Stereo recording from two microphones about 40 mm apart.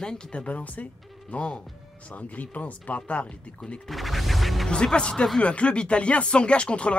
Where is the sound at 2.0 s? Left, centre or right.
Left.